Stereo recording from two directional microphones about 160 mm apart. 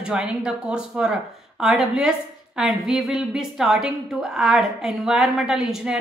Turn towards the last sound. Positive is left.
turn(degrees=-5)  # may be behind; listen again after turning